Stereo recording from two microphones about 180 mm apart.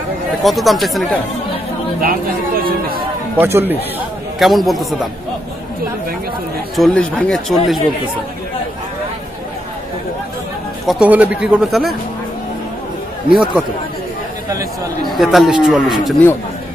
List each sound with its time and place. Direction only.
0.4 s speech: centre (ahead or behind)
2.0 s speech: 50° right (ahead or behind)
3.3 s speech: 10° right (ahead or behind)
4.4 s speech: centre (ahead or behind)
6.8 s speech: 5° left (ahead or behind)
10.9 s speech: 5° right (ahead or behind)
13.3 s speech: 5° right (ahead or behind)
15.0 s speech: centre (ahead or behind)